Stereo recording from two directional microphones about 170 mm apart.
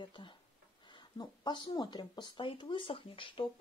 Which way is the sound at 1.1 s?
25° left (ahead or behind).